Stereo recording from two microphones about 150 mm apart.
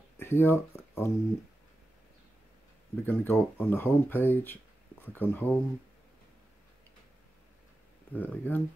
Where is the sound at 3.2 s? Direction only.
15° left (ahead or behind).